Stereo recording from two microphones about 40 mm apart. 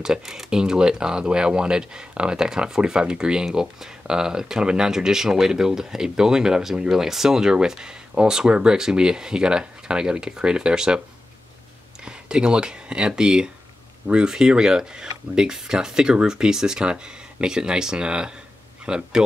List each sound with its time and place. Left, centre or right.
0.0 s speech: centre
12.0 s speech: right